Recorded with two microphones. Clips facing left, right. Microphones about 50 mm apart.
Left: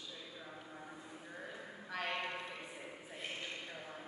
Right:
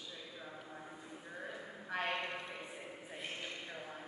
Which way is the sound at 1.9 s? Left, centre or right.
Right.